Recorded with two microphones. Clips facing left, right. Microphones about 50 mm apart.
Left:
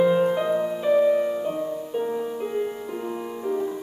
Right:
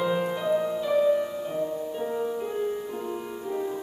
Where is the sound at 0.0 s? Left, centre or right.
Left.